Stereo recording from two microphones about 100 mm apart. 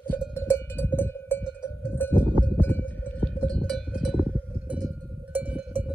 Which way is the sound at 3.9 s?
5° right (ahead or behind).